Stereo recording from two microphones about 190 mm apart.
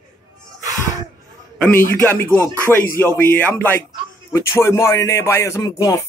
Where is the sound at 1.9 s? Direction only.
10° left (ahead or behind).